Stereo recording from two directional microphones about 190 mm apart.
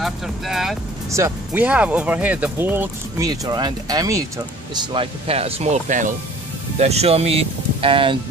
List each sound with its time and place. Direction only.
0.0 s speech: centre (ahead or behind)
1.1 s speech: 10° right (ahead or behind)